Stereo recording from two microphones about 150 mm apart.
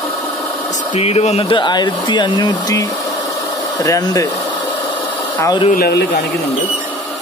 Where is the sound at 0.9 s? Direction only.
45° left (ahead or behind); by 4.3 s 20° left (ahead or behind).